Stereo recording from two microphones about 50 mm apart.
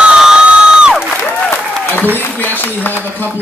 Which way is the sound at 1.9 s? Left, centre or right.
Left.